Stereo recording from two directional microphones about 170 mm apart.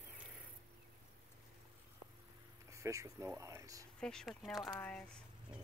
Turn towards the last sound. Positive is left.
turn(degrees=10)  # may be behind; listen again after turning